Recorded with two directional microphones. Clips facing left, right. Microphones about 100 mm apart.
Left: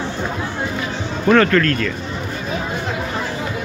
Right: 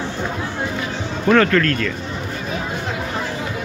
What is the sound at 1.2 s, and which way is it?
Speech, 5° left (ahead or behind).